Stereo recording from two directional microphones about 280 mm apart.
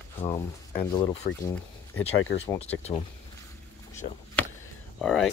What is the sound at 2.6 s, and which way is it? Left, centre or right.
Speech, left.